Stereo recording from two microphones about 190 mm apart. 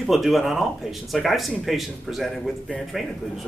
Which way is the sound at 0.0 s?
Centre (ahead or behind).